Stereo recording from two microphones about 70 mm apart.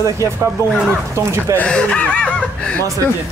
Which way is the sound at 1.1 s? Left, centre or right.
Right.